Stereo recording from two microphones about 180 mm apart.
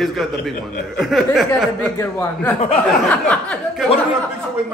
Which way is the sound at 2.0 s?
10° left (ahead or behind).